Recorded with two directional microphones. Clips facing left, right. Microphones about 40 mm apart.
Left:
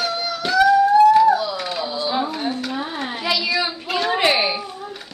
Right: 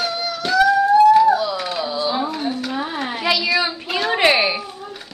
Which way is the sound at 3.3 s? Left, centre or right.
Right.